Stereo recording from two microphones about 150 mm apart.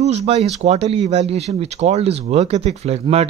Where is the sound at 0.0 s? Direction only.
45° right (ahead or behind).